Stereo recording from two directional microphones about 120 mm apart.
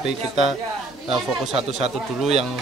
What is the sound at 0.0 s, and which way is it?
Speech, 5° right (ahead or behind).